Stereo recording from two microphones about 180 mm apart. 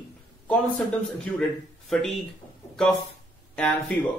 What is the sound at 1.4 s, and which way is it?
Speech, centre (ahead or behind).